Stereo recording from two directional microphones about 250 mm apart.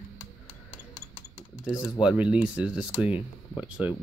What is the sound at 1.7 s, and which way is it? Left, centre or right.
Speech, centre.